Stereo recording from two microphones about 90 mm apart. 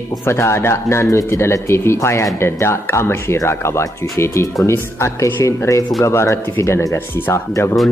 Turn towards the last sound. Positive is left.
turn(degrees=30)  # may be behind; listen again after turning